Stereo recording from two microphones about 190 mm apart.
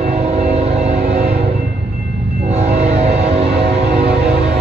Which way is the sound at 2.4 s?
35° right (ahead or behind).